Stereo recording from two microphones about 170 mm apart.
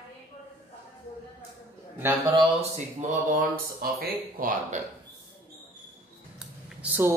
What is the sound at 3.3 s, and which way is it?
Speech, 60° right (ahead or behind).